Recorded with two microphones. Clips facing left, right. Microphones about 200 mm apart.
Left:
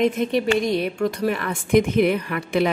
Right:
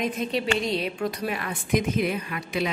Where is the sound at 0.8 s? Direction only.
50° left (ahead or behind).